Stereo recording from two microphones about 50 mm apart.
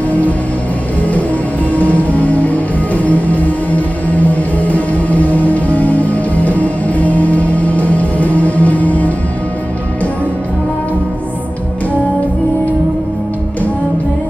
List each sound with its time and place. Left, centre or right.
1.7 s music: left